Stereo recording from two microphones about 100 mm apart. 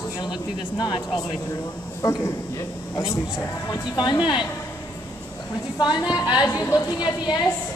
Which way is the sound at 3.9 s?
45° left (ahead or behind).